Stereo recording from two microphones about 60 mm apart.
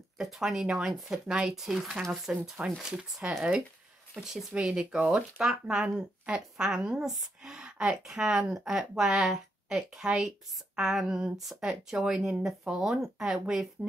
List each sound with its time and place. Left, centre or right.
0.4 s speech: centre
1.2 s speech: centre
1.5 s speech: centre
4.6 s speech: centre